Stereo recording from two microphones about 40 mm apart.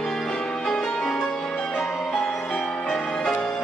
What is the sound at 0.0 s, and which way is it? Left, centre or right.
Music, centre.